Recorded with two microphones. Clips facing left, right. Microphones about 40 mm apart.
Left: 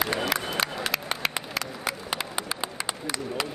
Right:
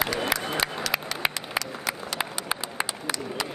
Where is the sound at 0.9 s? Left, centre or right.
Centre.